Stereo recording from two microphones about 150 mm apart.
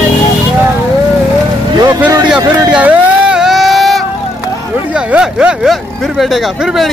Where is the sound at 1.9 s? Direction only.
25° right (ahead or behind).